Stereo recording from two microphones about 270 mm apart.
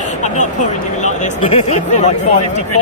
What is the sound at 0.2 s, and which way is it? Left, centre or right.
Speech, left.